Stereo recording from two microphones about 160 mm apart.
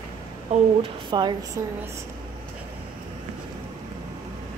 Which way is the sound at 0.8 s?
30° right (ahead or behind).